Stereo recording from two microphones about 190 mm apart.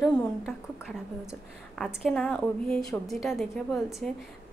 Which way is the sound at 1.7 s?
Centre (ahead or behind).